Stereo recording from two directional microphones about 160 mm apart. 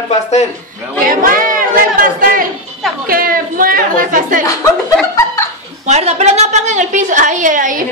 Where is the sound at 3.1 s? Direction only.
60° right (ahead or behind).